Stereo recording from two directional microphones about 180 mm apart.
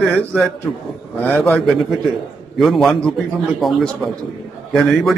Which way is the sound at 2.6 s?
Centre (ahead or behind).